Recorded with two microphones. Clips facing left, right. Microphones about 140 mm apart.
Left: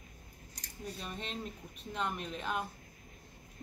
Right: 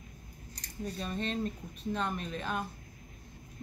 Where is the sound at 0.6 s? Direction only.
10° left (ahead or behind).